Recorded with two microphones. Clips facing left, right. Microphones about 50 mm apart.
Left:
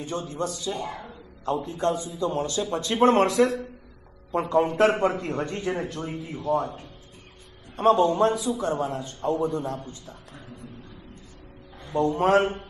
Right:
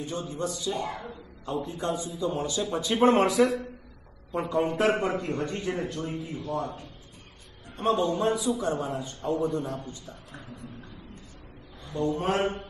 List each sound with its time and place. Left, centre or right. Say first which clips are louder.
0.1 s a man's voice: left 4 dB; centre
7.7 s a man's voice: left 6 dB; left
8.3 s a man's voice: left 1 dB; centre
11.8 s a man's voice: left 4 dB; left
12.2 s speech: left 9 dB; left